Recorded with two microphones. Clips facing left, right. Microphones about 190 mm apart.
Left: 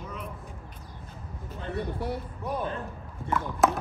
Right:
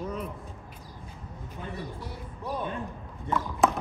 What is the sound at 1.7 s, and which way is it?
Music, 60° left (ahead or behind).